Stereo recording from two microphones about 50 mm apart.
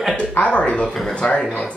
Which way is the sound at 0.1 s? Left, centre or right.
Left.